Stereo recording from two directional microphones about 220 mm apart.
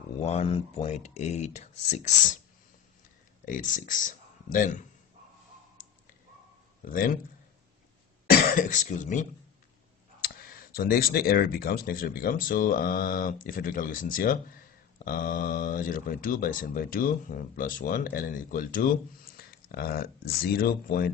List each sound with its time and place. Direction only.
0.2 s speech: 30° left (ahead or behind)
3.4 s speech: 35° left (ahead or behind)
6.8 s speech: 40° left (ahead or behind)
8.3 s speech: 40° left (ahead or behind)